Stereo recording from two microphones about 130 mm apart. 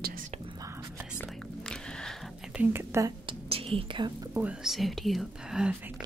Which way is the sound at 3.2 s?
45° right (ahead or behind).